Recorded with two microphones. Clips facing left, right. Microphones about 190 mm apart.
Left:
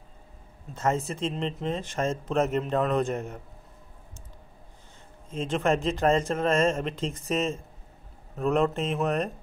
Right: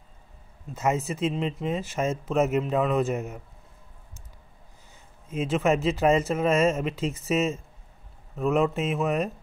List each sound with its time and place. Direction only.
0.7 s speech: 10° right (ahead or behind)
5.3 s speech: 5° right (ahead or behind)